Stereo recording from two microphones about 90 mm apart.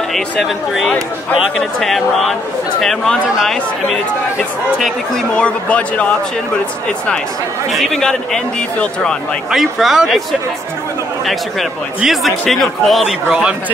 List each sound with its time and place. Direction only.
0.1 s a man's voice: 5° left (ahead or behind)
4.7 s a man's voice: centre (ahead or behind)
5.4 s a man's voice: 15° left (ahead or behind)
7.7 s a man's voice: 5° left (ahead or behind)
9.5 s a man's voice: 5° right (ahead or behind)
12.0 s a man's voice: centre (ahead or behind)